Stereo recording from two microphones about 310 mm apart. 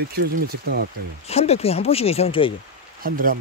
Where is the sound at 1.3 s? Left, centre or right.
Centre.